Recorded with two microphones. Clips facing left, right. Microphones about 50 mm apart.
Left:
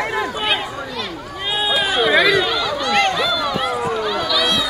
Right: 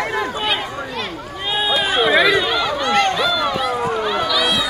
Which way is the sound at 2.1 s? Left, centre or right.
Centre.